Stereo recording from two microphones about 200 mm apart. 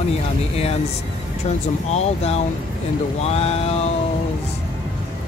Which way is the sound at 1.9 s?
35° left (ahead or behind).